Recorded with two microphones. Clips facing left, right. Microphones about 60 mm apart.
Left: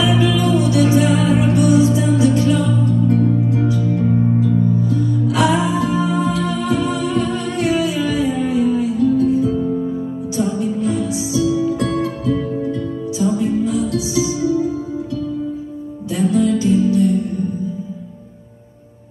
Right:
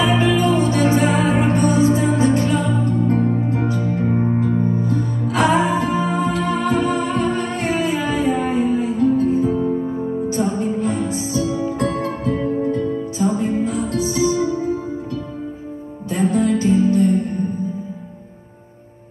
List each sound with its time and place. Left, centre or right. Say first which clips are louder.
0.0 s music: even; right
16.1 s music: left 1 dB; right